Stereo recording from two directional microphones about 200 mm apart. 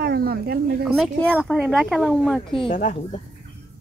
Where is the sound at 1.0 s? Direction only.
5° left (ahead or behind).